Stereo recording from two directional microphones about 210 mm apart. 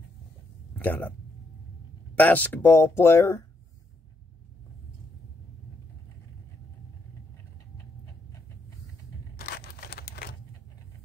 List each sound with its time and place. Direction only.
0.7 s speech: 10° left (ahead or behind)
2.1 s speech: 10° left (ahead or behind)
9.4 s crumpling: 50° left (ahead or behind)